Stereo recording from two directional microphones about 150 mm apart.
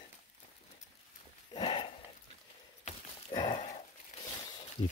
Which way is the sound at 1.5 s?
35° left (ahead or behind).